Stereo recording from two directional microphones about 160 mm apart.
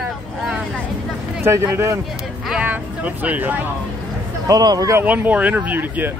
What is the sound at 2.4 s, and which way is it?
Vehicle, 5° right (ahead or behind).